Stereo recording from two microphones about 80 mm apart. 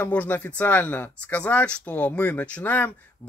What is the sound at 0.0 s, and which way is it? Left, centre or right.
Speech, centre.